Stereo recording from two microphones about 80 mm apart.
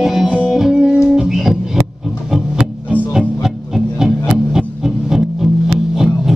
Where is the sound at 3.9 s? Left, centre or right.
Centre.